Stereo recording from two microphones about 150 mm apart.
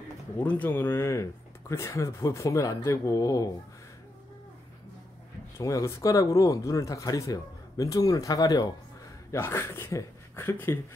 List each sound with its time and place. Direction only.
0.4 s speech: 10° left (ahead or behind)
5.6 s speech: 20° left (ahead or behind)